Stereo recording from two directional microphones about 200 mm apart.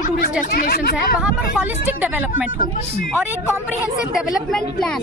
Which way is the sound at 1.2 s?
5° right (ahead or behind).